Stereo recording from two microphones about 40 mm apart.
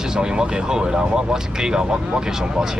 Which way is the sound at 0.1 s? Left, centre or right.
Centre.